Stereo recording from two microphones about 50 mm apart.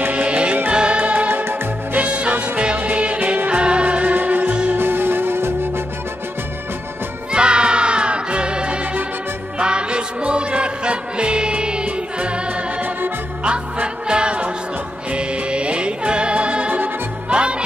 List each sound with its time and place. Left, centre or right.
0.1 s music: right
1.3 s music: right
2.0 s music: right
4.1 s music: right
4.7 s music: right
7.3 s music: centre
13.4 s music: right